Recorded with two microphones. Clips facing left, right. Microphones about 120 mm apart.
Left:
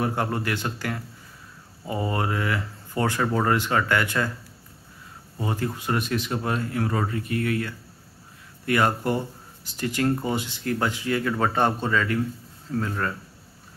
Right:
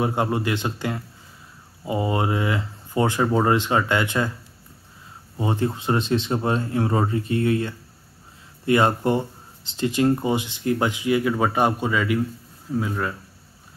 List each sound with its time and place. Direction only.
0.0 s speech: 20° right (ahead or behind)
5.4 s speech: 25° right (ahead or behind)